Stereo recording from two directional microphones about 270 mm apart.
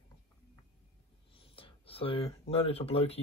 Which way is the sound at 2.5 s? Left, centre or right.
Left.